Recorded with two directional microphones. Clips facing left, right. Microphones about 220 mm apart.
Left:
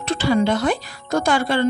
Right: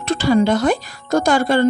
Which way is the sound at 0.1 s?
40° right (ahead or behind).